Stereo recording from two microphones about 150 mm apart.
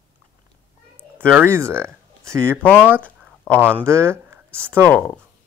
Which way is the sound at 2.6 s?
10° left (ahead or behind).